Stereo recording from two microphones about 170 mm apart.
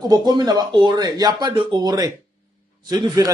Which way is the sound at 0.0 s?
25° right (ahead or behind).